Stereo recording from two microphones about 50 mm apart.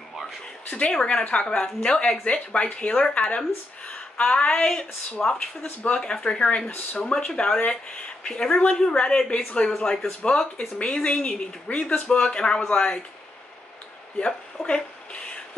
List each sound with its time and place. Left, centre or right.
0.7 s speech: left
7.2 s speech: centre
14.2 s a sound: centre